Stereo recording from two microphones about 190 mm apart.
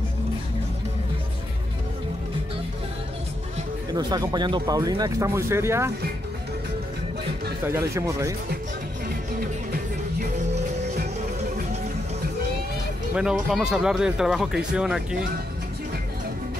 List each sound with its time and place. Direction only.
3.9 s speech: 20° right (ahead or behind)
7.9 s speech: 15° right (ahead or behind)
13.1 s speech: 5° right (ahead or behind)